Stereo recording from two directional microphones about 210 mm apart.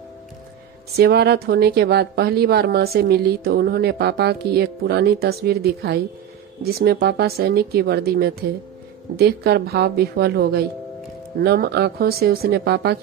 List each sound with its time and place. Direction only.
0.9 s speech: 50° right (ahead or behind)